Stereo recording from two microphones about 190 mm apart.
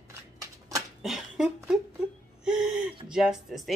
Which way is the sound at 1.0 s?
Centre (ahead or behind).